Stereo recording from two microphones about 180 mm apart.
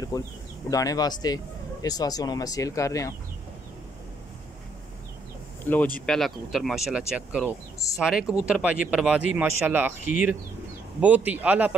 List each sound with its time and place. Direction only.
0.1 s speech: 20° left (ahead or behind)
5.7 s speech: 10° left (ahead or behind); by 11.7 s 10° right (ahead or behind)